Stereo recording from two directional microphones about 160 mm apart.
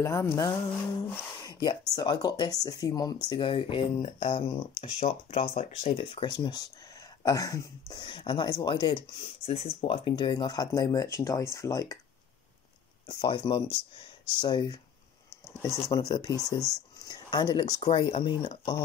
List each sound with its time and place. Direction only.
0.0 s speech: 20° left (ahead or behind)
13.0 s speech: 25° left (ahead or behind)
13.4 s speech: 35° left (ahead or behind)
14.4 s speech: 25° left (ahead or behind)